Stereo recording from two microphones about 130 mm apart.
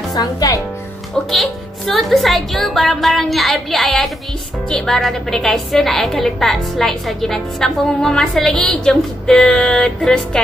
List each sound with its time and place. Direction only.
0.1 s a woman's voice: 30° left (ahead or behind)
1.3 s a woman's voice: centre (ahead or behind)